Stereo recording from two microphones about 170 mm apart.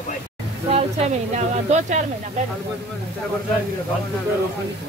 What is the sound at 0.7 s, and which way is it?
A woman's voice, 40° right (ahead or behind).